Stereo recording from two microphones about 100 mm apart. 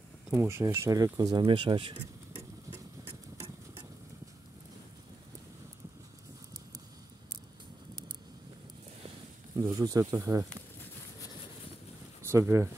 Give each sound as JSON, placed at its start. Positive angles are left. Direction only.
{"t": 0.3, "sound": "speech", "side_deg": -25}
{"t": 1.5, "sound": "speech", "side_deg": -55}
{"t": 9.6, "sound": "speech", "side_deg": -40}
{"t": 12.2, "sound": "speech", "side_deg": -25}